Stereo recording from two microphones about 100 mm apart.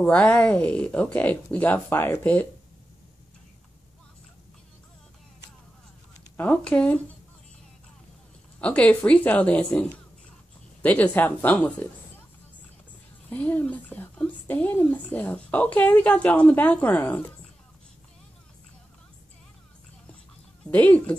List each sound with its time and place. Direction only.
0.0 s speech: 15° left (ahead or behind)
6.3 s speech: 15° left (ahead or behind)
8.5 s speech: 10° left (ahead or behind)
13.3 s speech: 15° left (ahead or behind)
20.7 s speech: 15° left (ahead or behind)